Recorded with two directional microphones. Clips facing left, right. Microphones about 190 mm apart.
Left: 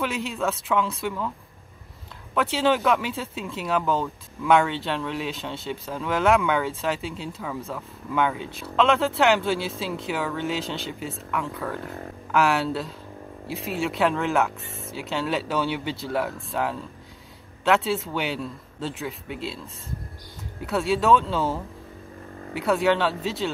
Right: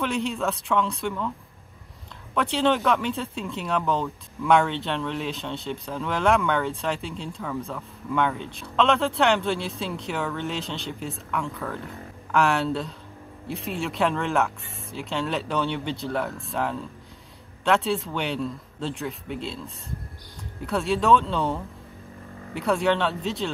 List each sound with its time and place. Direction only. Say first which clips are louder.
0.0 s speech: right 1 dB; 5° left (ahead or behind)
2.3 s speech: even; 5° left (ahead or behind)